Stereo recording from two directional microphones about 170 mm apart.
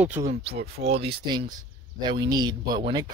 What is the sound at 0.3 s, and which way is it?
Speech, 35° right (ahead or behind).